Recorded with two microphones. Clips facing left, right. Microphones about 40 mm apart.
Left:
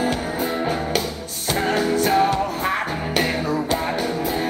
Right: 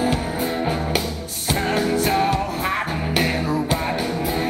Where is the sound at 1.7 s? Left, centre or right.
Centre.